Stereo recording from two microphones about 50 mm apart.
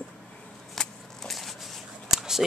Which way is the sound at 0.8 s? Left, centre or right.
Centre.